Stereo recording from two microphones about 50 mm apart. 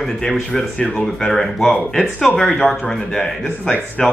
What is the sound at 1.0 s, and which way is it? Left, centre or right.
Speech, centre.